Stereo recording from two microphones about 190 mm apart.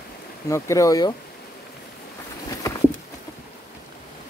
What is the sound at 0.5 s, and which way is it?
Speech, 15° left (ahead or behind).